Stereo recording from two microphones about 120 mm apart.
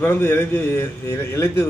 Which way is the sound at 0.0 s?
20° left (ahead or behind).